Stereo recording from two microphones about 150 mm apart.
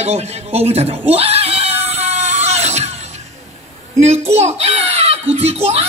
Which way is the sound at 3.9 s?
45° right (ahead or behind).